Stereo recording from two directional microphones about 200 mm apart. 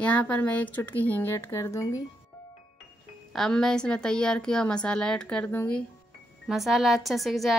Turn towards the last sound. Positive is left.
turn(degrees=0)  # may be behind; listen again after turning